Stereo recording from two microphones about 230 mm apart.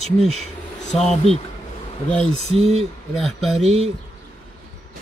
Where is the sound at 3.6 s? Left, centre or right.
Right.